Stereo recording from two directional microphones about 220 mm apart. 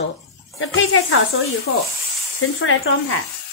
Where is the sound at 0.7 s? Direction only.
65° left (ahead or behind).